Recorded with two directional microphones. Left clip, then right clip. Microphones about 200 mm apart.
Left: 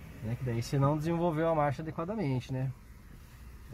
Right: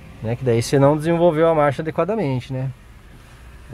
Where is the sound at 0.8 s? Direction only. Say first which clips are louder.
Right 14 dB; 20° right (ahead or behind).